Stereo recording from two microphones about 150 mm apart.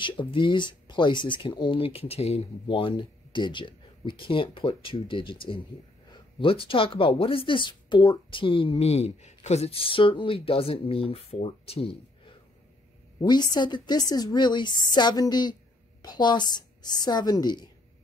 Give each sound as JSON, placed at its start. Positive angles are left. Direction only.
{"t": 0.0, "sound": "a woman's voice", "side_deg": 35}
{"t": 13.2, "sound": "a woman's voice", "side_deg": 25}